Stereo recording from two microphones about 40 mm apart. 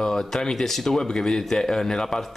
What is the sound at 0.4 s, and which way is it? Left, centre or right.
Speech, centre.